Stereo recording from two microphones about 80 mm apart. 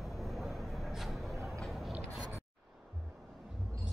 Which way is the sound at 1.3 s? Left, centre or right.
Right.